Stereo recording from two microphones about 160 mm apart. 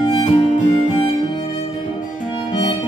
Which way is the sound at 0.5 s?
50° left (ahead or behind).